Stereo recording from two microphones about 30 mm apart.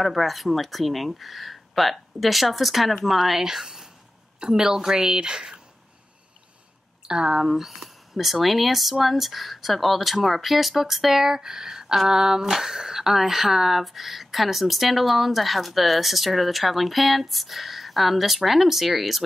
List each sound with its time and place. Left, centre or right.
0.0 s speech: centre
3.6 s a sound: centre
4.4 s speech: right
7.1 s speech: right
7.4 s speech: centre